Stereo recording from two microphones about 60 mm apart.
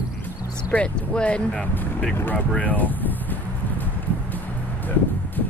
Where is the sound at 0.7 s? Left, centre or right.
Left.